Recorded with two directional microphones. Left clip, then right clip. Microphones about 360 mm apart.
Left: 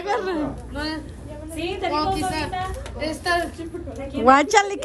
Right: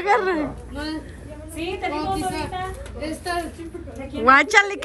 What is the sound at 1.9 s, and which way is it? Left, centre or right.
A woman's voice, centre.